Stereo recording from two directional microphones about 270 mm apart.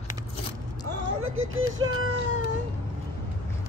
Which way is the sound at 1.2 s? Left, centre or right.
Right.